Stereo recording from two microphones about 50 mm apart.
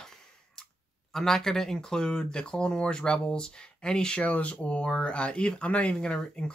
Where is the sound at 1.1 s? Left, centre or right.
Centre.